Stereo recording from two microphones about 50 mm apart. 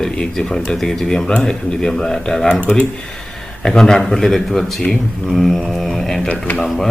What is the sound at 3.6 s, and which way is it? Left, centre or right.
Speech, centre.